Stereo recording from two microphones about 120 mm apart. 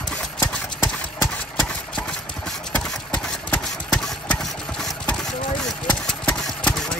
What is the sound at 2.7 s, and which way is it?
Engine, 10° left (ahead or behind).